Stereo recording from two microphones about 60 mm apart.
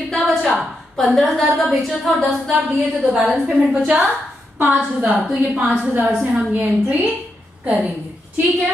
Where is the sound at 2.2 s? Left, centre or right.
Centre.